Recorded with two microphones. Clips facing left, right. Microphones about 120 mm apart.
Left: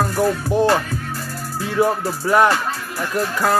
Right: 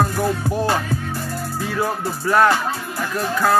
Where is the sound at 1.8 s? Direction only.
20° left (ahead or behind).